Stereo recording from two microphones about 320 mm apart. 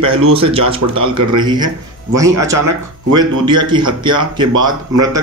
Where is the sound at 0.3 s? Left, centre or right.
Centre.